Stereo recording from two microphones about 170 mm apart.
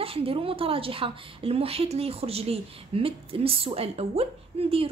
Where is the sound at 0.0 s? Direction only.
35° right (ahead or behind).